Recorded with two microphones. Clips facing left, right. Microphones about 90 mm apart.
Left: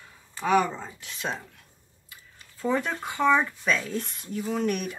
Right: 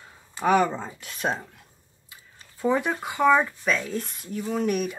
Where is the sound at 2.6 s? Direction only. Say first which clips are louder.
Right 3 dB; 15° right (ahead or behind).